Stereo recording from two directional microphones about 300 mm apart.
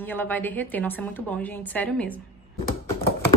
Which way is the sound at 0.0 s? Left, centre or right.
Centre.